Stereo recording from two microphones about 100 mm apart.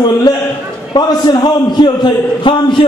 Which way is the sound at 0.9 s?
45° left (ahead or behind).